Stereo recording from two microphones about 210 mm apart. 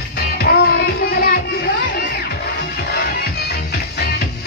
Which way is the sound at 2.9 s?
50° left (ahead or behind).